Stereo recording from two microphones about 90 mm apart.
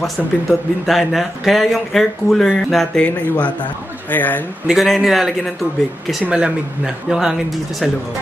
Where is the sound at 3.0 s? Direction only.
15° left (ahead or behind).